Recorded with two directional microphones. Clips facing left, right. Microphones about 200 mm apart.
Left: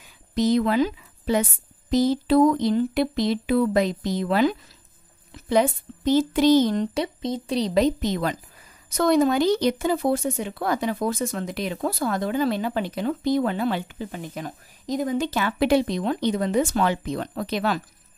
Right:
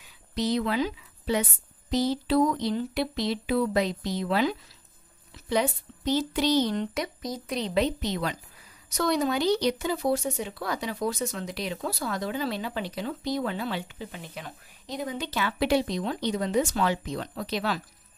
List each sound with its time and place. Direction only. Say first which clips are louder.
0.3 s speech: left 6 dB; 50° left (ahead or behind)
6.9 s speech: left 6 dB; 30° left (ahead or behind); by 17.8 s 55° left (ahead or behind)